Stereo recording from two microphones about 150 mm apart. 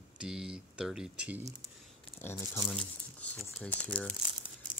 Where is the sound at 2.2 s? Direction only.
20° left (ahead or behind).